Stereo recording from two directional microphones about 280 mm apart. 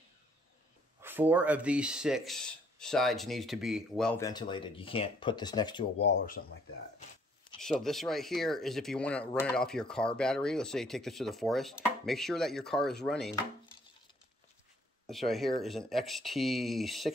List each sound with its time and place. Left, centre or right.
1.0 s speech: centre
6.0 s speech: left
7.6 s speech: centre
15.0 s speech: centre